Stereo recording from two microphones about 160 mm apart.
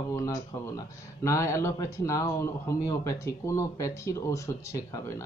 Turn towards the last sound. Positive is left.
turn(degrees=20)  # may be behind; listen again after turning